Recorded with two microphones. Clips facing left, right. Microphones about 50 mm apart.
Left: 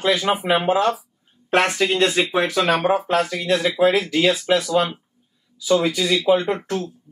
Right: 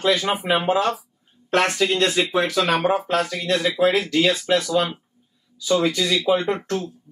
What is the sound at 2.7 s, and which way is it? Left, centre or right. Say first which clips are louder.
Speech: left 2 dB; centre.